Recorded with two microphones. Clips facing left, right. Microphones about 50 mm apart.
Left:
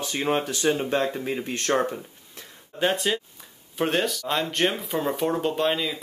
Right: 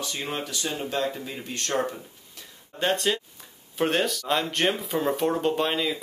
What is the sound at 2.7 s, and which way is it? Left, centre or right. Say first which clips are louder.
Speech: left 1 dB; centre.